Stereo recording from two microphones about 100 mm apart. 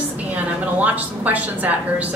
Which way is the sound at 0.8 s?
15° right (ahead or behind).